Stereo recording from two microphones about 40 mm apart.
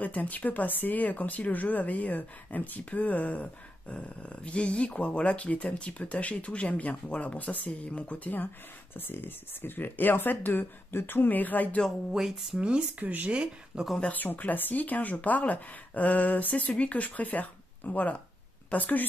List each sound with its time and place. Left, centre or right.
0.0 s speech: left
3.9 s speech: left
8.9 s speech: left
12.1 s speech: centre
12.5 s speech: right
13.0 s speech: right
13.3 s speech: right
14.0 s speech: left